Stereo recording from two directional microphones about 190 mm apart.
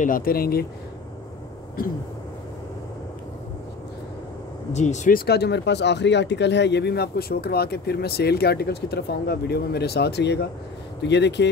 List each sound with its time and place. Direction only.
0.0 s speech: 45° left (ahead or behind)
1.8 s speech: 50° left (ahead or behind)
4.7 s speech: 40° left (ahead or behind); by 11.4 s 65° left (ahead or behind)